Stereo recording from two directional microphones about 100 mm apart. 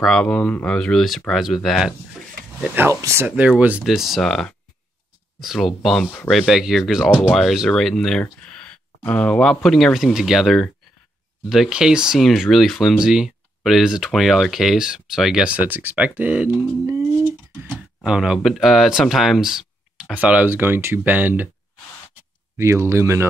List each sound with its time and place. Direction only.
0.0 s speech: 5° left (ahead or behind)
2.9 s speech: 30° right (ahead or behind)
3.3 s speech: 15° right (ahead or behind)
7.3 s speech: centre (ahead or behind); by 16.9 s 20° right (ahead or behind)
16.9 s a sound: 20° right (ahead or behind)
18.0 s speech: 10° right (ahead or behind)
22.6 s speech: 30° right (ahead or behind)